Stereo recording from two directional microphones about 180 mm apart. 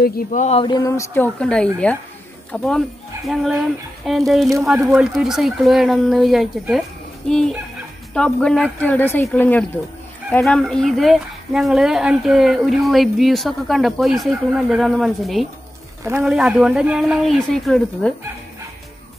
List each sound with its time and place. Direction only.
0.0 s speech: 45° left (ahead or behind); by 2.8 s centre (ahead or behind)
4.1 s speech: centre (ahead or behind)
4.7 s speech: 15° right (ahead or behind)
5.1 s speech: centre (ahead or behind)